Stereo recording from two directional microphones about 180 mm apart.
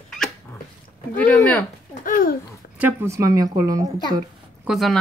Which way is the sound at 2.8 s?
15° right (ahead or behind).